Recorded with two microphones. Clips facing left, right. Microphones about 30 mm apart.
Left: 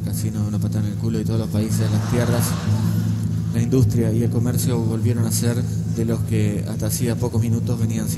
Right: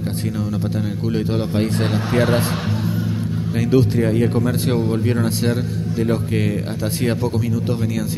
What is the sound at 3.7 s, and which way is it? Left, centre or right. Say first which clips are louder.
Speech: right 4 dB; right.